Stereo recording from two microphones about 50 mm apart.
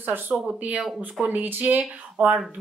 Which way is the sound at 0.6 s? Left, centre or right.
Right.